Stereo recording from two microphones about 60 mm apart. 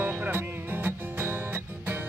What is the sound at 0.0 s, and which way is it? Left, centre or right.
Music, right.